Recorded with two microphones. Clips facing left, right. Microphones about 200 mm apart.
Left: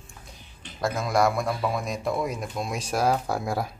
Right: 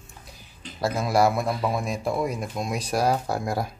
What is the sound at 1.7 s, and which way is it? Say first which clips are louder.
Speech: right 1 dB; centre (ahead or behind).